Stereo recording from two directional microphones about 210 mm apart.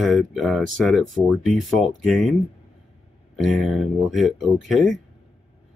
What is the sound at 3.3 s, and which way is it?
Speech, centre (ahead or behind).